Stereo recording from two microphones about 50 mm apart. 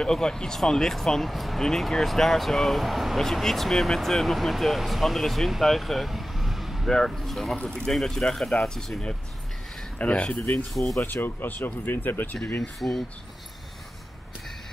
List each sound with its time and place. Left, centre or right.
0.0 s speech: centre
6.9 s speech: centre
9.9 s speech: left
10.7 s speech: centre
11.1 s speech: left
12.8 s speech: left